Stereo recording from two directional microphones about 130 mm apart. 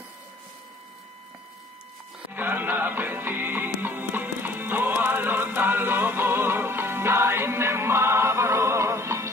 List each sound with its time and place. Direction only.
2.3 s music: 15° right (ahead or behind)